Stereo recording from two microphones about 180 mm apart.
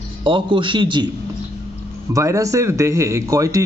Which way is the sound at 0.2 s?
30° right (ahead or behind).